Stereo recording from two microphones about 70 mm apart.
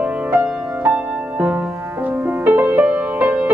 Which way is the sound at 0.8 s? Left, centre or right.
Right.